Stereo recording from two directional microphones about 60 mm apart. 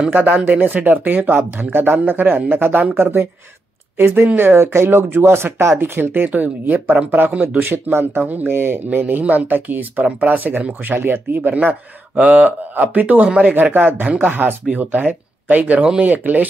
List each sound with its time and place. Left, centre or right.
0.1 s speech: right
5.8 s speech: right